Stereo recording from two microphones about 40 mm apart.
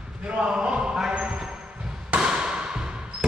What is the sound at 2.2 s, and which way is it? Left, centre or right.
Basketball bounce, centre.